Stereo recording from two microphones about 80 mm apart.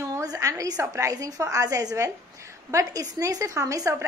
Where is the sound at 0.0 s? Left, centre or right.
Right.